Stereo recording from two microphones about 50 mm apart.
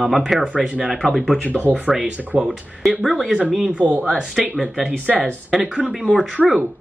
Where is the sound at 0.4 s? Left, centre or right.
Right.